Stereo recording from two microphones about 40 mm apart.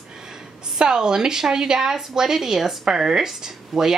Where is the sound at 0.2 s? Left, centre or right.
Centre.